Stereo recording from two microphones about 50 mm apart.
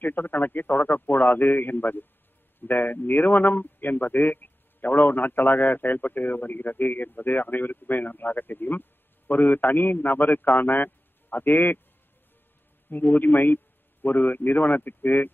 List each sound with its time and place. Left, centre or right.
0.0 s a man's voice: left
12.9 s a man's voice: left